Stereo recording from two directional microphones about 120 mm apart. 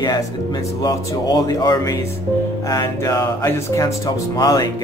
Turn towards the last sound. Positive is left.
turn(degrees=30)  # may be behind; listen again after turning